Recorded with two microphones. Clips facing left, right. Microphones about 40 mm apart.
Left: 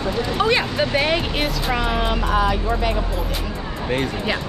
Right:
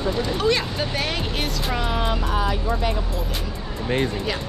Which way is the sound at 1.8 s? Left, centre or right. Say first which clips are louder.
Left 3 dB; centre.